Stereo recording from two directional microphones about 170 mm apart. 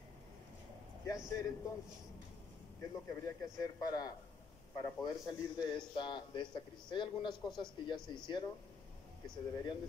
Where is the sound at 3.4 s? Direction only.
20° left (ahead or behind).